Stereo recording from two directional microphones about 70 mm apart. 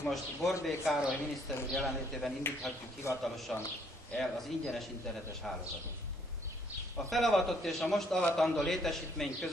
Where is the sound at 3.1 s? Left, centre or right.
Left.